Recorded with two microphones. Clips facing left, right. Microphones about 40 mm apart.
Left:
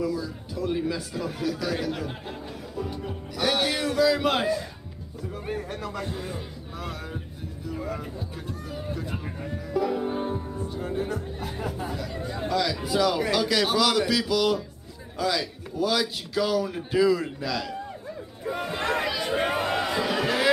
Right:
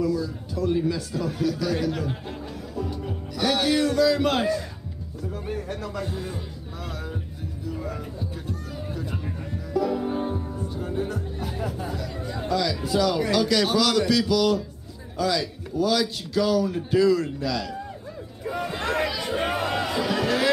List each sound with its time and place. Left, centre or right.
0.0 s speech: centre
7.7 s music: centre
10.7 s speech: centre
19.4 s a sound: centre